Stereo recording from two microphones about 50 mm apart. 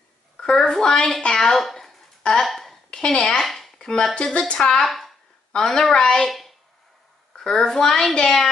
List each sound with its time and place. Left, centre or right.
0.4 s a child's voice: centre
2.4 s a sound: centre
2.9 s a child's voice: centre
3.4 s chopping: centre
3.7 s a child's voice: centre
4.8 s speech: centre
5.5 s a child's voice: centre
7.3 s a child's voice: centre